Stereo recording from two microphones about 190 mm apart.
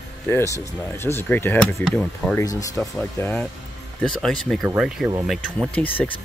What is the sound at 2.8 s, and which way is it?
Speech, 5° left (ahead or behind).